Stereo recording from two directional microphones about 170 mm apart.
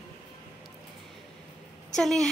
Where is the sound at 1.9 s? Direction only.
Centre (ahead or behind).